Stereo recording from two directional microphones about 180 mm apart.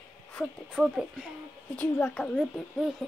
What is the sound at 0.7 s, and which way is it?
Speech, centre (ahead or behind).